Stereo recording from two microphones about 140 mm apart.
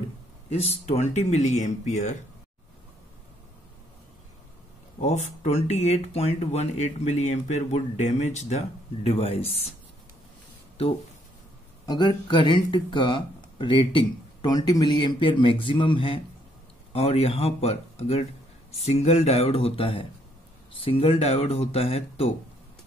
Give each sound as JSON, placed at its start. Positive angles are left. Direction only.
{"t": 0.5, "sound": "speech", "side_deg": 50}
{"t": 5.0, "sound": "speech", "side_deg": 50}
{"t": 10.8, "sound": "speech", "side_deg": 45}
{"t": 11.8, "sound": "speech", "side_deg": 30}